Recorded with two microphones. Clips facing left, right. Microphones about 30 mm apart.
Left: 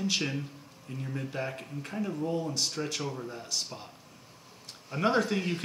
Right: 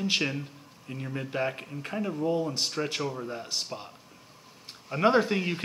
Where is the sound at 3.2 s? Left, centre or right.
Right.